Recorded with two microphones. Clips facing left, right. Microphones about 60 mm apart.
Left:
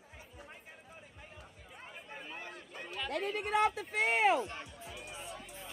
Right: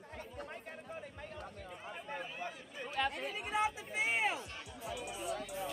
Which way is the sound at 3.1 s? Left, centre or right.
Left.